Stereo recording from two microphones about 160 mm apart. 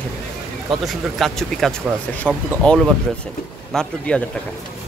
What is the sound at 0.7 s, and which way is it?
Speech, centre (ahead or behind).